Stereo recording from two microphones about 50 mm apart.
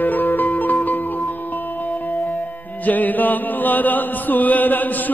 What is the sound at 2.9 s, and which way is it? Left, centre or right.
Chant, left.